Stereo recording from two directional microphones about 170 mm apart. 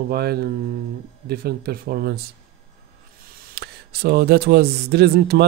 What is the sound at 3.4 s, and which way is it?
Speech, 65° right (ahead or behind).